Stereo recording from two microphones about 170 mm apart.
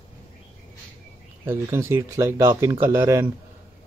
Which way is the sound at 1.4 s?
15° right (ahead or behind).